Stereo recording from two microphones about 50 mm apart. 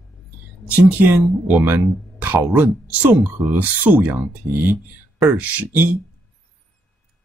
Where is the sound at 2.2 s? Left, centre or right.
Right.